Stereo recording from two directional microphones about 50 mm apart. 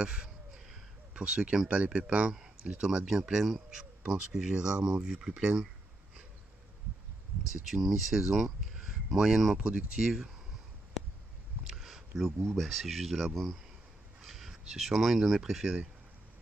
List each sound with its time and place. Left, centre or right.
0.0 s speech: centre
3.1 s speech: centre
7.6 s speech: centre
8.7 s a sound: centre
9.6 s speech: right
11.6 s a sound: centre
12.5 s speech: centre
14.2 s a sound: centre
14.6 s speech: centre